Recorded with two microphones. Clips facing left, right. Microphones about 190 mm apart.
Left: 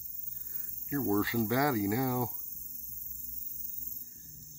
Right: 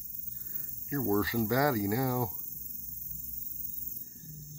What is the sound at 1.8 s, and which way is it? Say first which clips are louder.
Speech: even; 15° left (ahead or behind).